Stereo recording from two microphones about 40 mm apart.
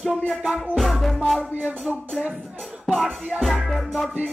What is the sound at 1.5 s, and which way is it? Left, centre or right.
Music, right.